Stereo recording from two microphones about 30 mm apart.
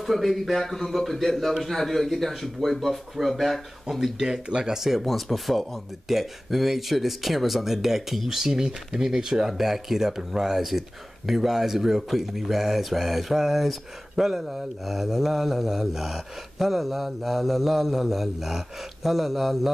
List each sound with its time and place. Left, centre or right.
0.0 s speech: centre
0.6 s speech: centre
4.2 s speech: right
4.7 s speech: centre